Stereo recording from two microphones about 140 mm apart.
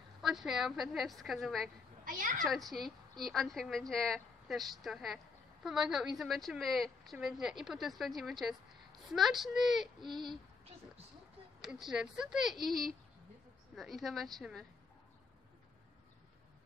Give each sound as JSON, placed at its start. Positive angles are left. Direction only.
{"t": 0.2, "sound": "a woman's voice", "side_deg": 0}
{"t": 2.0, "sound": "a sound", "side_deg": -75}
{"t": 2.4, "sound": "a woman's voice", "side_deg": 0}
{"t": 11.6, "sound": "a woman's voice", "side_deg": -5}